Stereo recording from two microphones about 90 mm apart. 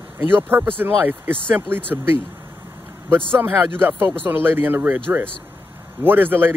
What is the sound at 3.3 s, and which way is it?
Speech, 25° right (ahead or behind).